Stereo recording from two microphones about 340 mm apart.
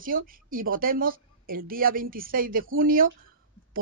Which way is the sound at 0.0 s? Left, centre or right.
Right.